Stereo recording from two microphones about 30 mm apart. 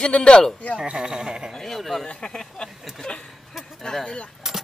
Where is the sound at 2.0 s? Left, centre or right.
Left.